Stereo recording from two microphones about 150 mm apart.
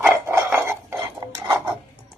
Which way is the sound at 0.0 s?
15° right (ahead or behind).